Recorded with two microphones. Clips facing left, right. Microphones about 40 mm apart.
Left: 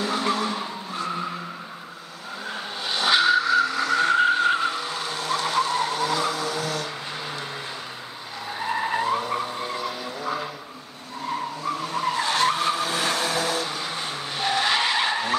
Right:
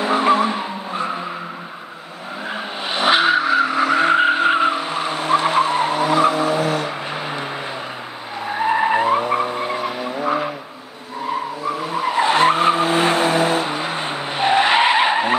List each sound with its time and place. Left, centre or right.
0.0 s vehicle: right
2.9 s vehicle: right
8.5 s skidding: right
11.6 s vehicle: centre